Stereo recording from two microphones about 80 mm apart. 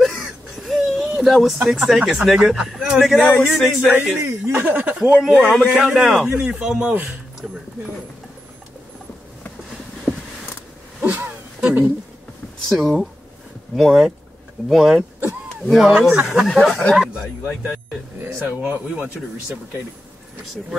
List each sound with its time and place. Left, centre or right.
0.0 s whimper: centre
1.2 s speech: centre
3.8 s a man's voice: centre
5.1 s a man's voice: centre
10.1 s a sound: centre
11.0 s a sound: right
12.6 s speech: centre
15.9 s speech: centre
18.2 s speech: right